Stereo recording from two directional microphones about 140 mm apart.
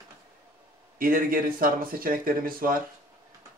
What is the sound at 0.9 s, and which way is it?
Speech, 90° right.